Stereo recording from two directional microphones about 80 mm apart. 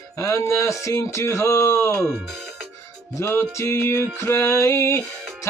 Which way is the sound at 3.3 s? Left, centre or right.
Left.